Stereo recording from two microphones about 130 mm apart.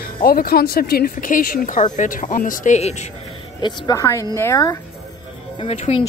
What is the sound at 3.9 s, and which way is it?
Speech, 25° left (ahead or behind).